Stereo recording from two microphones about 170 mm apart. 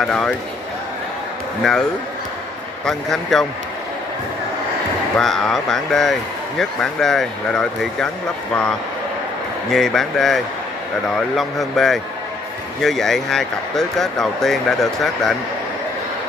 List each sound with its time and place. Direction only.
0.0 s speech: 5° left (ahead or behind)
1.6 s speech: 5° left (ahead or behind)
5.1 s speech: centre (ahead or behind)
9.7 s speech: centre (ahead or behind)